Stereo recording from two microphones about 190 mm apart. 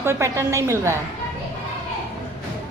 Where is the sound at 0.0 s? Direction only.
15° right (ahead or behind).